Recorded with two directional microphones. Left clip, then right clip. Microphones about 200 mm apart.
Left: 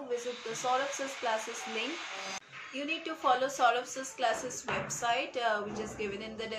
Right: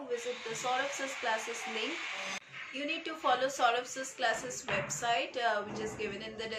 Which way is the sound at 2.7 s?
15° left (ahead or behind).